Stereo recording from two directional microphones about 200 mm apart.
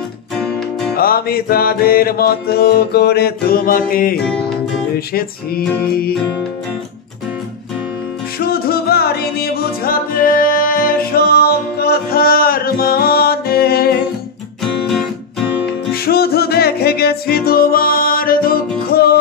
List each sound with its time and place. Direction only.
0.9 s music: 50° left (ahead or behind)
8.5 s music: 50° left (ahead or behind)
14.6 s guitar: centre (ahead or behind)
15.9 s music: 50° left (ahead or behind)